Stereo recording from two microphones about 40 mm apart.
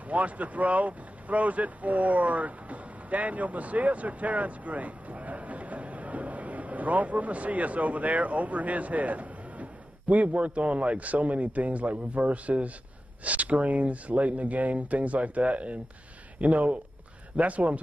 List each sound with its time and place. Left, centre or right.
0.1 s speech: right